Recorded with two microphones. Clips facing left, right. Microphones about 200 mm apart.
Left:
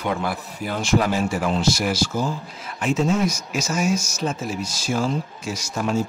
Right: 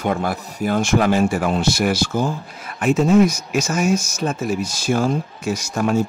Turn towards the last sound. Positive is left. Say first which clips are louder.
# right 4 dB
turn(degrees=-55)  # may be behind; listen again after turning